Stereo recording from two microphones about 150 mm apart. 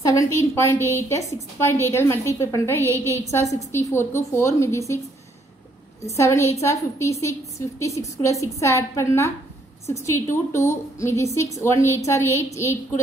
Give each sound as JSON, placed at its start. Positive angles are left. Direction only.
{"t": 0.1, "sound": "a woman's voice", "side_deg": 20}
{"t": 6.1, "sound": "a woman's voice", "side_deg": 20}